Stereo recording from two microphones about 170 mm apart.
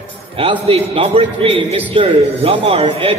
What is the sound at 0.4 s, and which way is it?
A man's voice, 35° right (ahead or behind).